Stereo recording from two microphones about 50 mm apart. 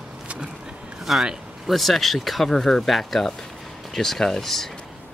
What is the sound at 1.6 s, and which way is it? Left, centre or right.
Speech, centre.